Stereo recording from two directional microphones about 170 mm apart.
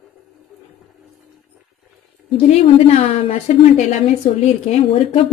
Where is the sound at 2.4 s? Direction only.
40° left (ahead or behind).